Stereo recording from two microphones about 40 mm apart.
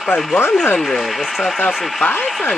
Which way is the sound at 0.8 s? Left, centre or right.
Centre.